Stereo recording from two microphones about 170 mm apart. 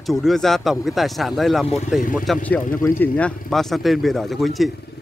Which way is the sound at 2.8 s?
10° left (ahead or behind).